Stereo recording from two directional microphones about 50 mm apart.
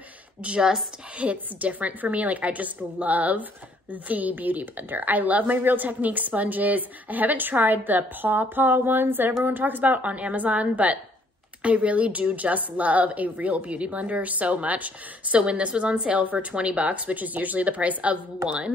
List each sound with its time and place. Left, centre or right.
0.6 s speech: centre
1.1 s a woman's voice: right